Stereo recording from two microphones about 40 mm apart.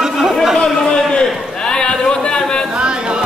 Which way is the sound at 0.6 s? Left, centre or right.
Centre.